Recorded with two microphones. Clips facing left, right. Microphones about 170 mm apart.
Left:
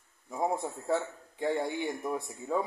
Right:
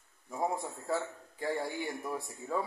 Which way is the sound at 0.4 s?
20° left (ahead or behind).